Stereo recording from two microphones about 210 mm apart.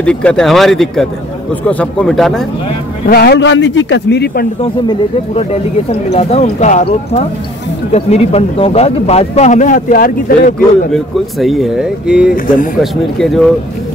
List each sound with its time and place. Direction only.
0.0 s speech: 5° left (ahead or behind)
3.1 s a man's voice: 45° left (ahead or behind)
4.8 s speech: 30° left (ahead or behind)
10.9 s speech: centre (ahead or behind)